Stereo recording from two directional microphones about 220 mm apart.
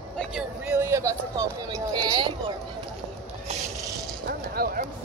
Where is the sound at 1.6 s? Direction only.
20° right (ahead or behind).